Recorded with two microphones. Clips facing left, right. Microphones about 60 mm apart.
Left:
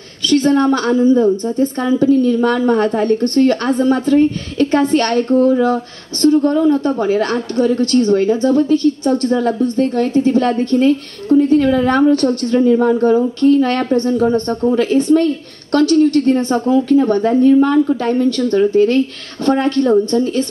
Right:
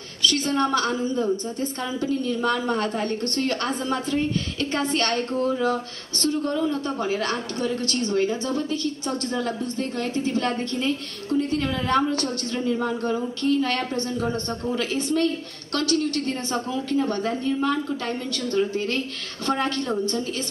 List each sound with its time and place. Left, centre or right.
0.3 s a woman's voice: left
6.2 s a woman's voice: left